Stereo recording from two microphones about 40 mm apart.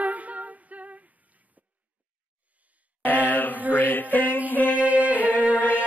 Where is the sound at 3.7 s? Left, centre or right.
Left.